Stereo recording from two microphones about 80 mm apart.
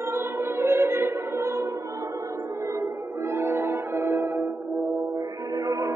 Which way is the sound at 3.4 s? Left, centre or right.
Right.